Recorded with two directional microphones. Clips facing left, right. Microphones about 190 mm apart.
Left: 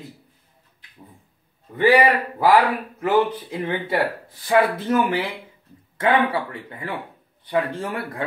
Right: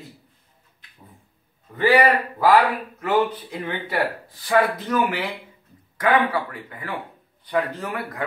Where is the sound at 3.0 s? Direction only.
25° left (ahead or behind).